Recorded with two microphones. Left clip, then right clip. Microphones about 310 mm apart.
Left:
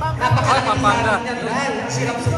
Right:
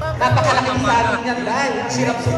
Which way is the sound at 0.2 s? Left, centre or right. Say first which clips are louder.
Right 2 dB; right.